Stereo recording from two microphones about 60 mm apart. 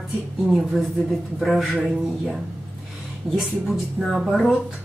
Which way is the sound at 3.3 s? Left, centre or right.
Centre.